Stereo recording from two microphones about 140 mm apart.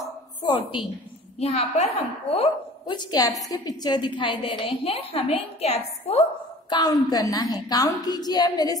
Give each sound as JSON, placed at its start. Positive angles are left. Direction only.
{"t": 0.0, "sound": "a sound", "side_deg": 30}
{"t": 1.4, "sound": "a woman's voice", "side_deg": 45}
{"t": 2.9, "sound": "a woman's voice", "side_deg": 30}
{"t": 6.7, "sound": "a woman's voice", "side_deg": 30}